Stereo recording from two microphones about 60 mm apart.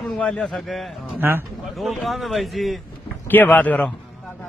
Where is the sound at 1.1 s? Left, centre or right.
Right.